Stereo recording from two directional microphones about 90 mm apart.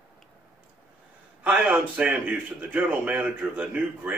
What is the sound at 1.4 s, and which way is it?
Speech, 15° right (ahead or behind).